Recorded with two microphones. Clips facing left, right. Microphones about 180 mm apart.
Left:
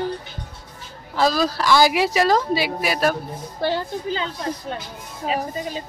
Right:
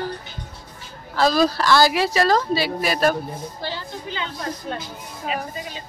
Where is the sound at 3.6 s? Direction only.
60° left (ahead or behind).